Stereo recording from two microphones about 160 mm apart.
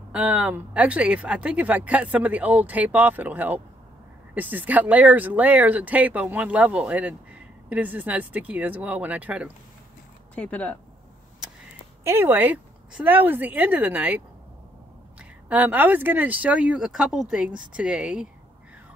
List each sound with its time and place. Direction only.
0.1 s speech: 5° right (ahead or behind)
10.3 s speech: 10° left (ahead or behind)
12.0 s speech: 15° right (ahead or behind)